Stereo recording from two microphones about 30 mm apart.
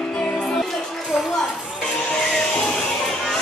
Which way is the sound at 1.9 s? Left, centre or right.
Left.